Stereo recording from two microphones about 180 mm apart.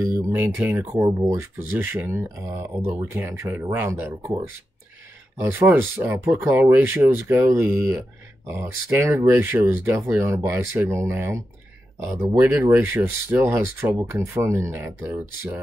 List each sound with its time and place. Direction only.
0.0 s speech: 15° right (ahead or behind)
5.4 s speech: 15° right (ahead or behind)